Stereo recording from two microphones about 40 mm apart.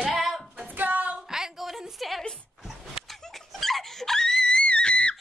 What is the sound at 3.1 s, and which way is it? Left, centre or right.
Wail, centre.